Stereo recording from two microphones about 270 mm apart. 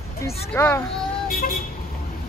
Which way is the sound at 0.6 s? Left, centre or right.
Centre.